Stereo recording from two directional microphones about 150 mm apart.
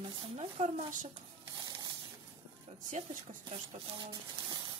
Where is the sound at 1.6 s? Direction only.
25° right (ahead or behind).